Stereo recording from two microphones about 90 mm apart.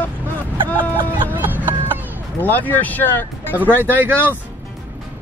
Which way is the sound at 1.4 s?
20° right (ahead or behind).